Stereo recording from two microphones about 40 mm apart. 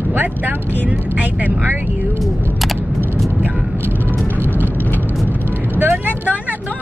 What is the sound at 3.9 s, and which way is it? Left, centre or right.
Vehicle, left.